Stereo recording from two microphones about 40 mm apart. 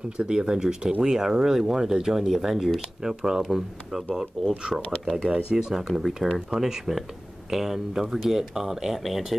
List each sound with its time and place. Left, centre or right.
0.3 s speech: centre
5.8 s speech: centre